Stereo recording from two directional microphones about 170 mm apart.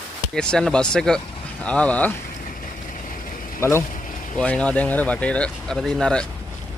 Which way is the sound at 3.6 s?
15° left (ahead or behind).